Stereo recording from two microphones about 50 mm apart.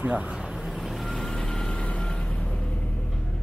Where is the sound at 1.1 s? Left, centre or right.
Centre.